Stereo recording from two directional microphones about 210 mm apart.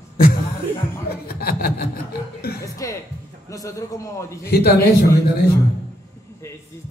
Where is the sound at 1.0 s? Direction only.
45° left (ahead or behind).